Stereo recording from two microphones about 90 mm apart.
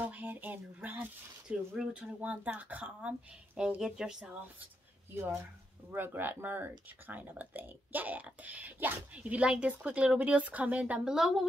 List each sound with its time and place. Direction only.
0.0 s speech: 20° right (ahead or behind)
5.9 s speech: 25° right (ahead or behind); by 11.4 s 5° right (ahead or behind)